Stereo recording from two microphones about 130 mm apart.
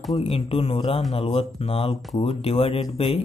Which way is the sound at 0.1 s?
50° left (ahead or behind).